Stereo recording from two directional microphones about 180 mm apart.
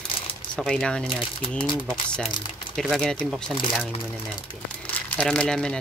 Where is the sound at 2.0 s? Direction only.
5° left (ahead or behind).